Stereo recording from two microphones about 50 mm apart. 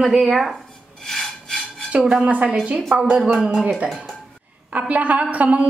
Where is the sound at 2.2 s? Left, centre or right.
Right.